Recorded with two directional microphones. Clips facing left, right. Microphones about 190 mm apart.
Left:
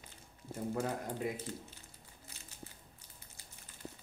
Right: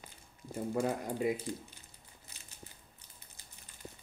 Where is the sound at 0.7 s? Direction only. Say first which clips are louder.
Right 5 dB; 10° right (ahead or behind).